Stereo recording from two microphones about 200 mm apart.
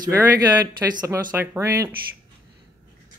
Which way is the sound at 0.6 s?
15° right (ahead or behind).